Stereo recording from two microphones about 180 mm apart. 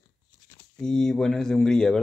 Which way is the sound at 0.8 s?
5° left (ahead or behind).